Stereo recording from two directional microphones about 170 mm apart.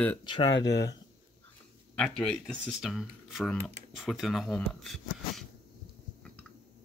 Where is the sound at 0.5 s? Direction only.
90° left.